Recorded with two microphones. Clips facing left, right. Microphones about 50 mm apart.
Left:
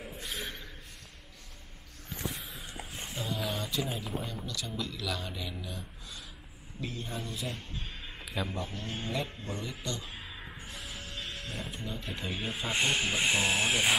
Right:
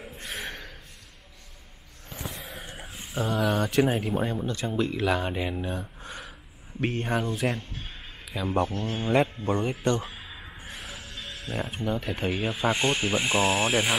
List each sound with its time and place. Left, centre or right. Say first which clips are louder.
0.2 s a sound: right 5 dB; right
2.1 s vehicle: right 2 dB; right
2.6 s speech: right 1 dB; right
4.3 s speech: right 9 dB; right
6.8 s speech: right 11 dB; right
11.2 s music: right 10 dB; right
11.7 s speech: right 9 dB; right
12.7 s speech: right 4 dB; centre